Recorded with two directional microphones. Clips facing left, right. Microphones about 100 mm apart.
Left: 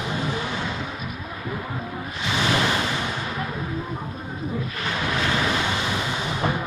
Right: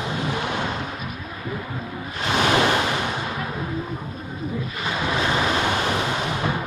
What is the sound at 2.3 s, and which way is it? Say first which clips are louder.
Waves: right 4 dB; 50° right (ahead or behind).